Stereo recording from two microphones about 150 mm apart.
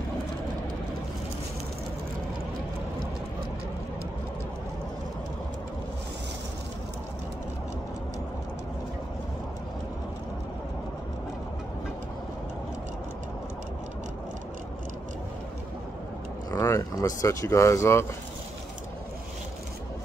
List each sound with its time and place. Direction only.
16.4 s speech: 20° left (ahead or behind)